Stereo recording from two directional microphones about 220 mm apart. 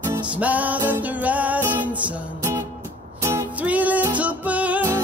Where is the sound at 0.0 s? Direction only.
10° right (ahead or behind).